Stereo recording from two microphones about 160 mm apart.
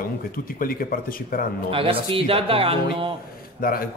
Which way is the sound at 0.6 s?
65° left (ahead or behind).